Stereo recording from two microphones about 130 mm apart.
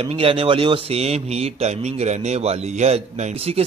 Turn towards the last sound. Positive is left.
turn(degrees=-50)  # may be behind; listen again after turning